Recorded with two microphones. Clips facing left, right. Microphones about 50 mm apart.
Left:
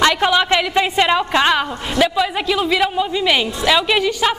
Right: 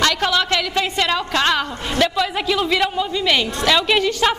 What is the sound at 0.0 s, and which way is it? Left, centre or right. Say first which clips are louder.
A woman's voice: left 3 dB; centre.